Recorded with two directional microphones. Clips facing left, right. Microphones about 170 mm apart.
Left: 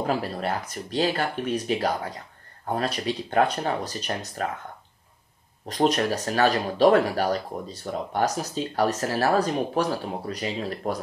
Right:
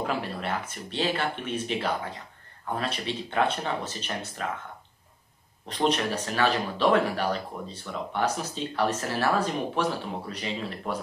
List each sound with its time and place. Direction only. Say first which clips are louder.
0.0 s speech: left 4 dB; 40° left (ahead or behind)
5.7 s speech: left 3 dB; 40° left (ahead or behind)